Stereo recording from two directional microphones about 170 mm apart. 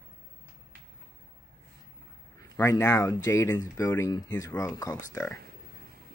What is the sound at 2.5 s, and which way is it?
Speech, 15° left (ahead or behind).